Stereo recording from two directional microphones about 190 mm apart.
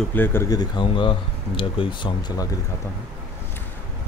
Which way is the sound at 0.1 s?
10° left (ahead or behind).